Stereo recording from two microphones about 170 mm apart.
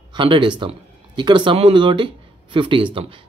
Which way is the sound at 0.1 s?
30° right (ahead or behind).